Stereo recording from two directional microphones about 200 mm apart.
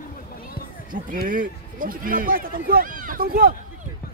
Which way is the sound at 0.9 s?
45° right (ahead or behind).